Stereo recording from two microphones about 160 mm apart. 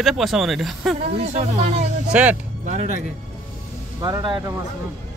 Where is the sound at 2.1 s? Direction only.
10° right (ahead or behind).